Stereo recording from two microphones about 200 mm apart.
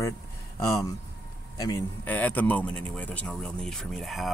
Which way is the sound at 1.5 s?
15° left (ahead or behind).